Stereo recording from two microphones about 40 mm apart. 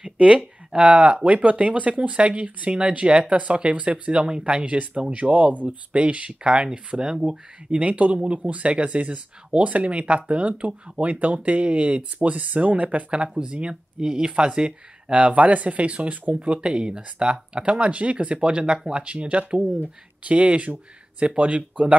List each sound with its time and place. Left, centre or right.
0.2 s a sound: right
0.7 s speech: right; by 7.7 s centre
7.7 s speech: right